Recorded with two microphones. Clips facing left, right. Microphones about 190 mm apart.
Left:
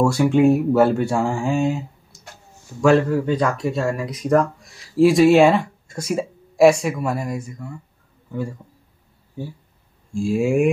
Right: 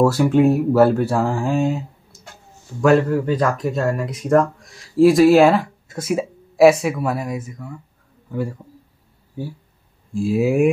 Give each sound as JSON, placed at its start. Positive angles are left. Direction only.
{"t": 0.0, "sound": "speech", "side_deg": -5}
{"t": 10.1, "sound": "speech", "side_deg": -5}